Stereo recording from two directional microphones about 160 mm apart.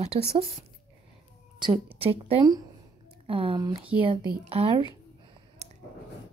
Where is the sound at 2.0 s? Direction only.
35° right (ahead or behind).